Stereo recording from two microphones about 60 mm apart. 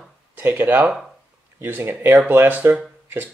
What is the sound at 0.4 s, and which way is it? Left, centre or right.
Speech, right.